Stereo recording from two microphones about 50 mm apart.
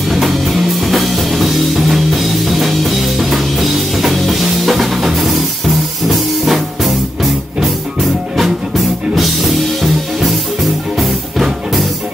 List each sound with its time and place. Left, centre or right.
0.1 s music: centre